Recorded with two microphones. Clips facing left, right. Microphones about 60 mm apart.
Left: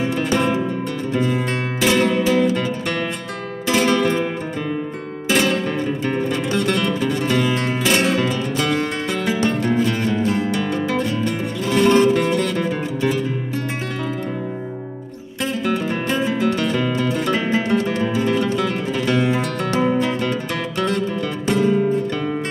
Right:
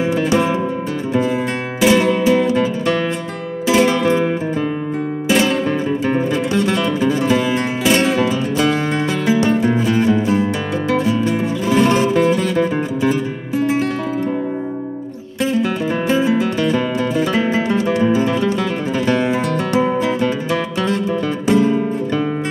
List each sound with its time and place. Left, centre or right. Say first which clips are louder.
0.0 s music: right 3 dB; centre
1.8 s music: right 4 dB; centre
5.3 s music: right 2 dB; centre
16.1 s music: right 3 dB; centre
21.5 s music: right 2 dB; centre